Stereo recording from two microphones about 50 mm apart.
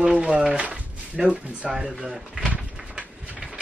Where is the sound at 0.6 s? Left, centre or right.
Right.